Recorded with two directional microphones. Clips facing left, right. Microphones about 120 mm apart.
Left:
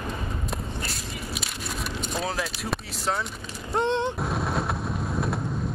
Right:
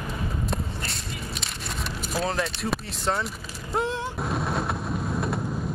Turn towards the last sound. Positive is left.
turn(degrees=0)  # may be behind; listen again after turning